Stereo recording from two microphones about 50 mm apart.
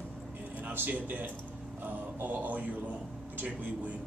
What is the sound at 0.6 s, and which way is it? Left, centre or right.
A man's voice, right.